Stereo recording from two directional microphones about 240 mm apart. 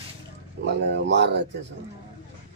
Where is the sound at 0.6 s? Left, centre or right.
Right.